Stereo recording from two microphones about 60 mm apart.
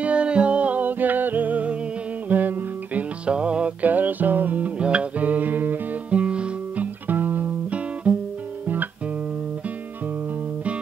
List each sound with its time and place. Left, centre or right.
0.0 s music: centre
6.0 s guitar: centre
7.1 s music: right